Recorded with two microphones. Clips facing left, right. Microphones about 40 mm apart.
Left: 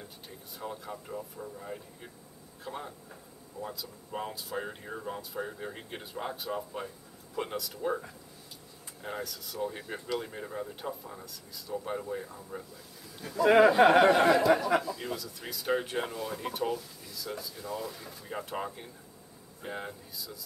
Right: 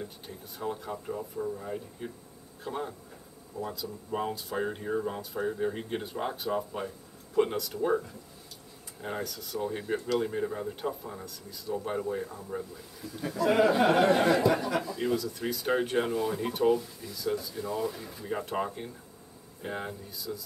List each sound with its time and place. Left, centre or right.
0.0 s speech: centre
9.0 s speech: centre
13.8 s a sound: left
14.1 s speech: centre